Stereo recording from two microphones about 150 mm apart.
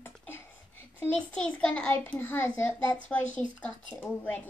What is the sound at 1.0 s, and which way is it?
A child's voice, 10° left (ahead or behind).